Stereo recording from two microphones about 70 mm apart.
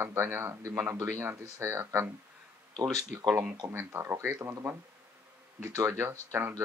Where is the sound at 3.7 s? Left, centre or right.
Right.